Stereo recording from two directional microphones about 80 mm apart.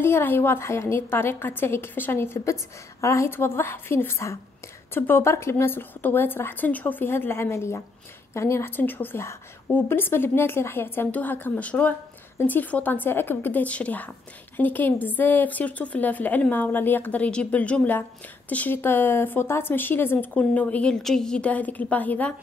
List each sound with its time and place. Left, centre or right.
0.0 s a woman's voice: left